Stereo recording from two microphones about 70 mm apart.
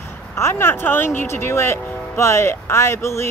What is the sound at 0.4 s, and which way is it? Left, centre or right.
Speech, left.